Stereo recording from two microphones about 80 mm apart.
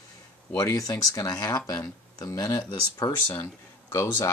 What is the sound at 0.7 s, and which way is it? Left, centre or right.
Speech, left.